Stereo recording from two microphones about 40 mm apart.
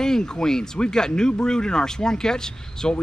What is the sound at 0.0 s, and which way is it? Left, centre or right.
A man's voice, centre.